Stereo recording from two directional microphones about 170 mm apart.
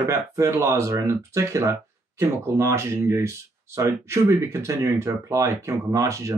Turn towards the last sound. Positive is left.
turn(degrees=-20)  # may be behind; listen again after turning